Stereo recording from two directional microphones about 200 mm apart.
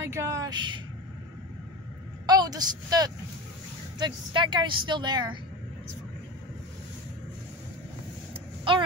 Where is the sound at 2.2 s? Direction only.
20° right (ahead or behind).